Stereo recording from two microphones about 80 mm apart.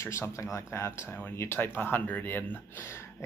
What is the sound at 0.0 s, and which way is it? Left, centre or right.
Speech, left.